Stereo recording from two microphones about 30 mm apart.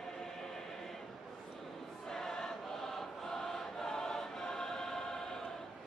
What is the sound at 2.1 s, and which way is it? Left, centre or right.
Choir, centre.